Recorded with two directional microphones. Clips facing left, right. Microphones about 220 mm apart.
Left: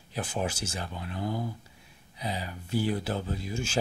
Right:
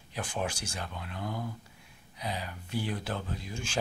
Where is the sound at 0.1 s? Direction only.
5° left (ahead or behind).